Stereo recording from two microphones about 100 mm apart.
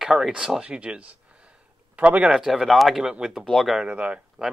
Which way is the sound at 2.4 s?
Centre (ahead or behind).